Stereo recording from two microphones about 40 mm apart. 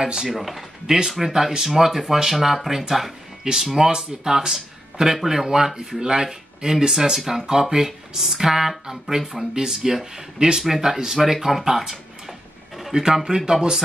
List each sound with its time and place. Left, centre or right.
0.0 s speech: centre
0.3 s speech: centre
3.7 s speech: centre